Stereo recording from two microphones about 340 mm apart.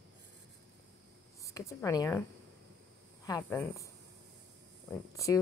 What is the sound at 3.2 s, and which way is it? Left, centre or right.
Speech, centre.